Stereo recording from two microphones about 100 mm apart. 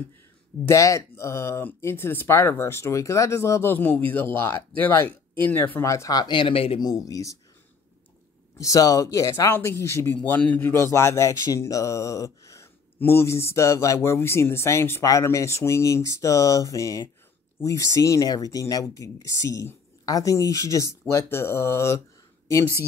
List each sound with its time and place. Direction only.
0.7 s a man's voice: 30° left (ahead or behind); by 6.8 s 70° left (ahead or behind)
6.8 s speech: 40° left (ahead or behind)
8.5 s a man's voice: 35° left (ahead or behind)